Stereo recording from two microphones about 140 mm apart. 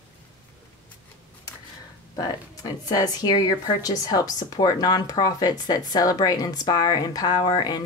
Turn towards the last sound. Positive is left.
turn(degrees=30)  # may be behind; listen again after turning